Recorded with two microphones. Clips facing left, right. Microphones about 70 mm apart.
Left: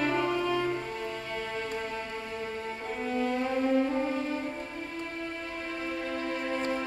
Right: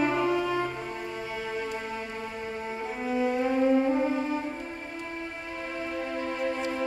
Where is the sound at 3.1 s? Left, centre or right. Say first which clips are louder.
Right 3 dB; centre.